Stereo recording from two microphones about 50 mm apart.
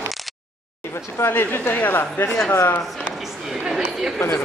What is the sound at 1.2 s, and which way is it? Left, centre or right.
A woman's voice, left.